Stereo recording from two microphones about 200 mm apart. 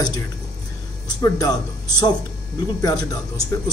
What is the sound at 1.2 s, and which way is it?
Speech, 20° left (ahead or behind).